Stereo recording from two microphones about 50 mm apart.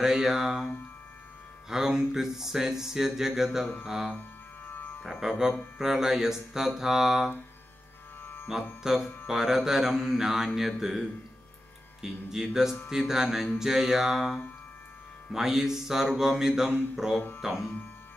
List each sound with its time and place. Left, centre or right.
0.0 s speech: centre
1.7 s speech: centre
4.6 s music: left
5.0 s speech: centre
8.2 s music: left
8.8 s speech: centre
15.3 s speech: centre